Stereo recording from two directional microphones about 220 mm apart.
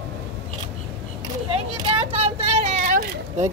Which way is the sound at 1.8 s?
25° right (ahead or behind).